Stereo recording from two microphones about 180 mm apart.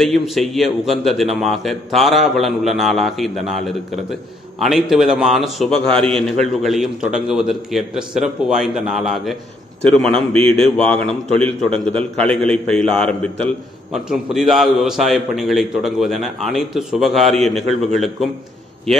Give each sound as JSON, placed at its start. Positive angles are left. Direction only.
{"t": 0.0, "sound": "a man's voice", "side_deg": 0}